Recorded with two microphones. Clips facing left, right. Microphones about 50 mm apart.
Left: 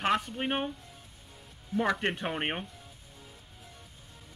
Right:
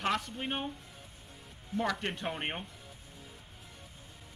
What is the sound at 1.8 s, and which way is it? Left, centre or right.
Speech, left.